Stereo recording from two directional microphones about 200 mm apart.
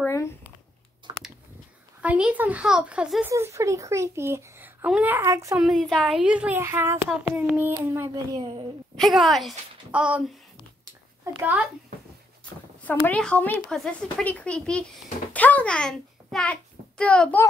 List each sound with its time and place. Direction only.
0.0 s a sound: 15° left (ahead or behind)
1.1 s a sound: 20° right (ahead or behind)
2.0 s speech: 5° right (ahead or behind)
5.6 s speech: centre (ahead or behind); by 8.6 s 25° right (ahead or behind)
8.9 s a child's voice: centre (ahead or behind)
12.8 s a child's voice: 5° left (ahead or behind)